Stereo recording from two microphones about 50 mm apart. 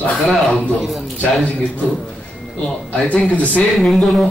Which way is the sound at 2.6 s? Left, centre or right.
Centre.